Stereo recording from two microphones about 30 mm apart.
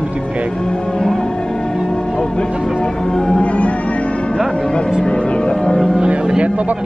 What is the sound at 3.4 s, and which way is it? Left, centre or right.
Music, left.